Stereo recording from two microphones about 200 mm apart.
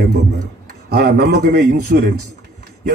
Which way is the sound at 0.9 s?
55° right (ahead or behind).